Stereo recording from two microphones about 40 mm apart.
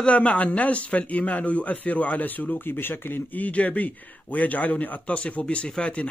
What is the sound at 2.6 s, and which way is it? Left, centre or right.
Speech, left.